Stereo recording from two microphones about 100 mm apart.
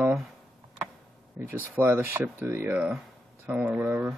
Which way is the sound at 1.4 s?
20° right (ahead or behind).